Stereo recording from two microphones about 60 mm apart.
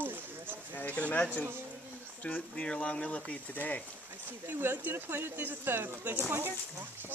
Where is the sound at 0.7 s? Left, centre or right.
Left.